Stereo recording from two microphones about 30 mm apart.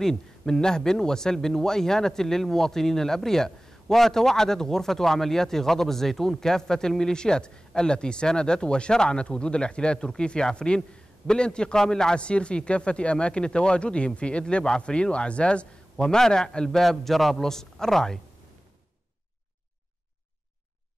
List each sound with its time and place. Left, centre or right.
0.0 s a man's voice: centre
12.2 s speech: left
16.0 s a man's voice: left
16.9 s a man's voice: centre
17.5 s a man's voice: centre